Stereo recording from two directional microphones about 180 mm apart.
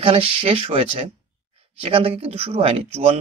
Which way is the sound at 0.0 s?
30° right (ahead or behind).